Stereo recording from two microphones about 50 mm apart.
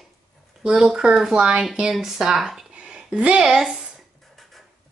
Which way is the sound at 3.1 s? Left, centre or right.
Right.